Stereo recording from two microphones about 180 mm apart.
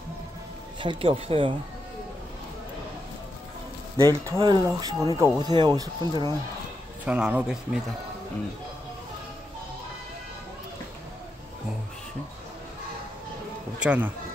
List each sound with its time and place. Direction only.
0.7 s speech: 30° right (ahead or behind)
4.4 s speech: 20° right (ahead or behind)
7.1 s speech: 5° right (ahead or behind)
13.7 s speech: 10° right (ahead or behind)